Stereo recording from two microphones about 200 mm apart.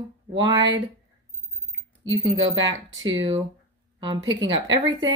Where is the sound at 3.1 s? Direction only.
25° right (ahead or behind).